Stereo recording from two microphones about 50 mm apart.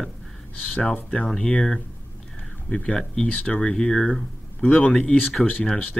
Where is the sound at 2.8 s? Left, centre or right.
Centre.